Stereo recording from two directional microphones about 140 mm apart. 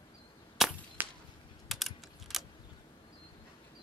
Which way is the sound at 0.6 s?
Centre (ahead or behind).